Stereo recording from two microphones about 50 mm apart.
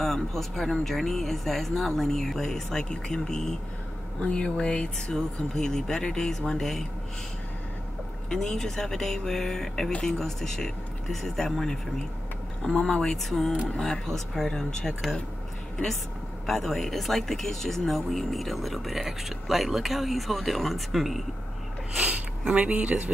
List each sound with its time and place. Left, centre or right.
0.0 s speech: centre
8.3 s speech: centre
16.4 s speech: centre
22.5 s speech: right